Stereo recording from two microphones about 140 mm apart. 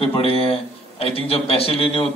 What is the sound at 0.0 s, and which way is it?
A man's voice, 40° left (ahead or behind).